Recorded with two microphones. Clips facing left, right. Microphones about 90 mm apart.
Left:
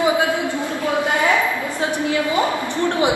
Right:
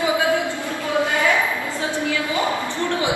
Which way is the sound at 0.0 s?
20° left (ahead or behind).